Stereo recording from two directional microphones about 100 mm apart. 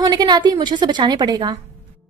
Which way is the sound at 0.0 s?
40° right (ahead or behind).